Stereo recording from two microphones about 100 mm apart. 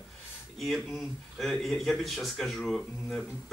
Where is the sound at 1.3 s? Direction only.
5° left (ahead or behind).